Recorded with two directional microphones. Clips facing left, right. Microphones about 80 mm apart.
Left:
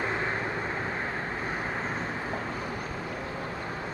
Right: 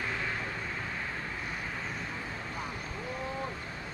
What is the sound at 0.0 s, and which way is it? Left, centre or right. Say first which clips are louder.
Vehicle: left 5 dB; left.